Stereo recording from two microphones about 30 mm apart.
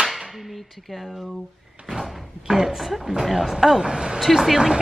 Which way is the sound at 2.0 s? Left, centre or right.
Centre.